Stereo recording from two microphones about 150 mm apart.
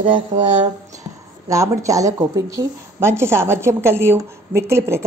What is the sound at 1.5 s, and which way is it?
Speech, 20° right (ahead or behind).